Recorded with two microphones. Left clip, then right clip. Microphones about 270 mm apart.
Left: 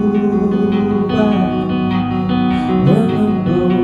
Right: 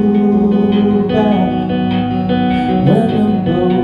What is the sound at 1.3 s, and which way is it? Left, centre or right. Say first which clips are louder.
Music: right 2 dB; left.